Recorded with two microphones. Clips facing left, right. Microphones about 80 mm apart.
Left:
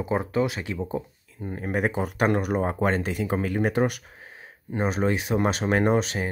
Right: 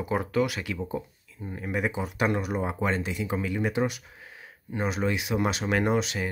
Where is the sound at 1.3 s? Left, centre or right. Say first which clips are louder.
Left 3 dB; left.